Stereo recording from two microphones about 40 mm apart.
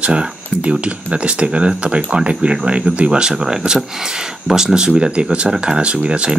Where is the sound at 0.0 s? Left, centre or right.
Right.